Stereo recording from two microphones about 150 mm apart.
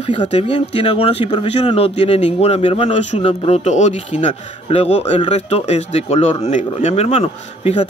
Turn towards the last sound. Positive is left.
turn(degrees=45)  # may be behind; listen again after turning